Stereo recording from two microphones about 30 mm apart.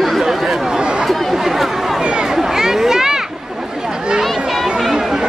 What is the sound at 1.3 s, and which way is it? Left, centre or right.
Chatter, centre.